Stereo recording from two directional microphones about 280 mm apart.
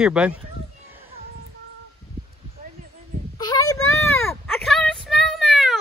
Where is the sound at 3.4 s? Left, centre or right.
Centre.